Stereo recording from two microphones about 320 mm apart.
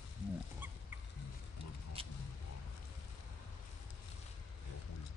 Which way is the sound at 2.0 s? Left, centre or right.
Centre.